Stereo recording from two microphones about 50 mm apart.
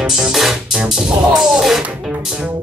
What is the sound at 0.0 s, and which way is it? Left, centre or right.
Music, centre.